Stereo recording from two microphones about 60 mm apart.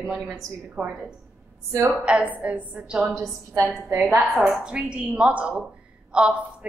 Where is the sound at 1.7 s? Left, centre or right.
Right.